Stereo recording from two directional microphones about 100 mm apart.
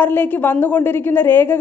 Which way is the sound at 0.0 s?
20° left (ahead or behind).